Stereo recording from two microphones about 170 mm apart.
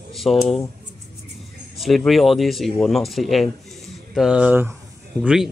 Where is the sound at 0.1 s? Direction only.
Centre (ahead or behind).